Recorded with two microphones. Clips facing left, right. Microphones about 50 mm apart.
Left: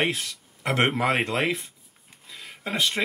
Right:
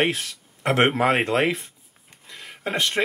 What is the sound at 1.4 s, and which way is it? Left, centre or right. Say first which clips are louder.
Speech: right 4 dB; centre.